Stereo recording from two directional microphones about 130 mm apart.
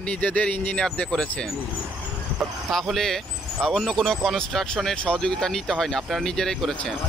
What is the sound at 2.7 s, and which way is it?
Speech, centre (ahead or behind).